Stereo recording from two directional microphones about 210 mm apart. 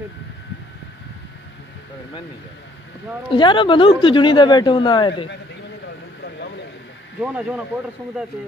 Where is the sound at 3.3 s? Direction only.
25° left (ahead or behind).